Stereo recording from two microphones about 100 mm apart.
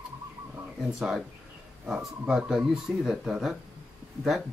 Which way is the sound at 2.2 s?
5° right (ahead or behind).